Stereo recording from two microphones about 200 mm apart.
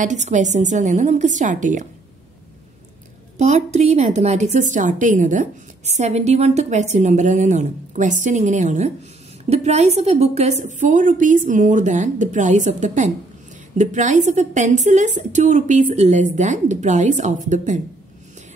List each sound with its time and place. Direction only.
0.0 s a woman's voice: 35° right (ahead or behind)
3.3 s a woman's voice: 35° right (ahead or behind)